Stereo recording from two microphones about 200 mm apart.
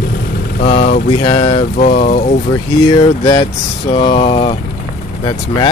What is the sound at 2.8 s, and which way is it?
Speech, 20° left (ahead or behind).